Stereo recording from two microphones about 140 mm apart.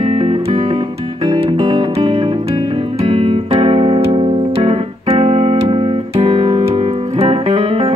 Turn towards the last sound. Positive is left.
turn(degrees=-40)  # may be behind; listen again after turning